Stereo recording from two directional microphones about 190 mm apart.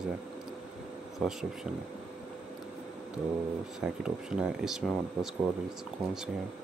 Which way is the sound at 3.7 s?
5° right (ahead or behind).